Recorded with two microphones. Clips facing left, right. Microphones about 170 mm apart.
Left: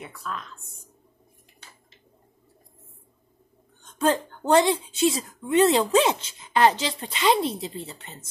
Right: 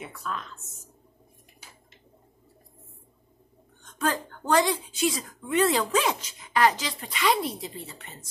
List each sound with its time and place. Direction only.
0.0 s a woman's voice: centre (ahead or behind)
4.0 s a woman's voice: 25° left (ahead or behind)